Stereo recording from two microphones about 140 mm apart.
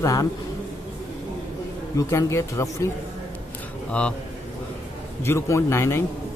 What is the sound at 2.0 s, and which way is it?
Speech, 20° left (ahead or behind).